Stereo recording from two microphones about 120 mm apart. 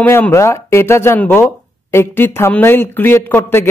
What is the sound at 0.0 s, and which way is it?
Speech, 15° left (ahead or behind).